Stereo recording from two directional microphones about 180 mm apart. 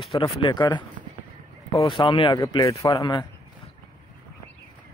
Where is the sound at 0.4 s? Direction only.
25° left (ahead or behind).